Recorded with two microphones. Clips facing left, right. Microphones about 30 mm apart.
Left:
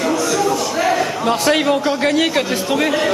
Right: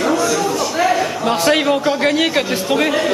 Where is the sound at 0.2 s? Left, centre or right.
Centre.